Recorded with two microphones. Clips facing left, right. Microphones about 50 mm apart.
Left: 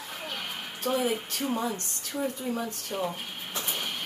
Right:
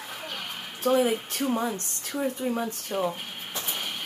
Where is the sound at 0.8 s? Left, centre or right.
Centre.